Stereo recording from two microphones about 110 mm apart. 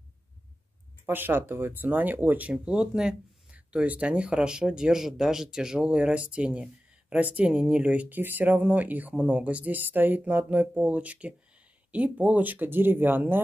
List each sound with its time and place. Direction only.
1.0 s speech: 20° right (ahead or behind)